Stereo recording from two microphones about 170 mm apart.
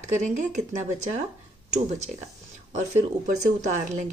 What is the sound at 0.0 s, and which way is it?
A woman's voice, 45° right (ahead or behind).